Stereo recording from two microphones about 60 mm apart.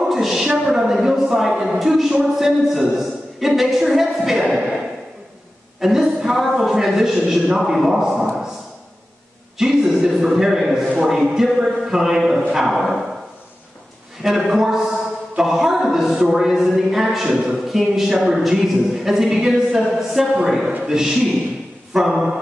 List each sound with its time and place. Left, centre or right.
0.0 s a woman's voice: centre
5.8 s a sound: centre
6.5 s a man's voice: centre
9.6 s a woman's voice: centre
14.2 s a woman's voice: centre